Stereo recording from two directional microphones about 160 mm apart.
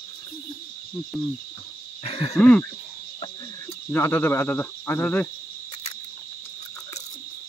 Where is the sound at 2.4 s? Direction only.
10° left (ahead or behind).